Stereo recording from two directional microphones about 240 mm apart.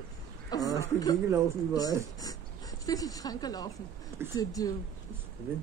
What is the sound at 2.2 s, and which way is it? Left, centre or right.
A woman's voice, centre.